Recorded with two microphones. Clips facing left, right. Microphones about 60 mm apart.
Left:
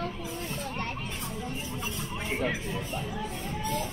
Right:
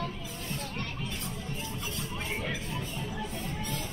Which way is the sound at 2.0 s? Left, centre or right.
Centre.